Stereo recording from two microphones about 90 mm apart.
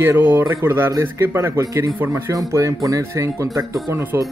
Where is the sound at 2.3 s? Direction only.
35° right (ahead or behind).